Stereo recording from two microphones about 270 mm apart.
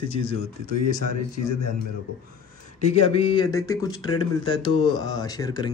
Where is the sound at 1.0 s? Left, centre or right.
Left.